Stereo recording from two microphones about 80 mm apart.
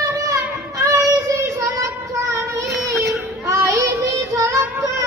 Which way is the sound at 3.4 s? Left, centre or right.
Right.